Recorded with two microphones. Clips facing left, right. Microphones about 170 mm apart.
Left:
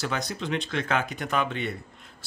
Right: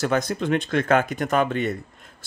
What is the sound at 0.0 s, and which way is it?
Speech, 50° right (ahead or behind).